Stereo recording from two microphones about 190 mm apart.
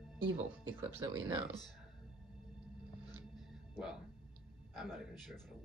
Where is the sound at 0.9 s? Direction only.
15° right (ahead or behind).